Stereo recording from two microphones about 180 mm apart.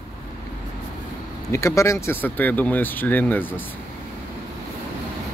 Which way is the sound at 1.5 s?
15° left (ahead or behind).